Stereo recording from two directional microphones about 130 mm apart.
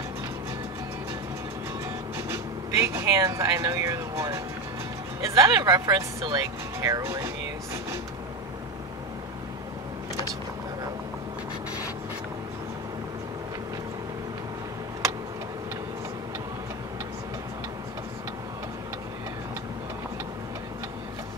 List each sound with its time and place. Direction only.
2.1 s speech: 20° right (ahead or behind)